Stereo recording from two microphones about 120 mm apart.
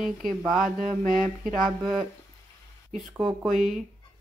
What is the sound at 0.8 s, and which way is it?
Mantra, 90° right.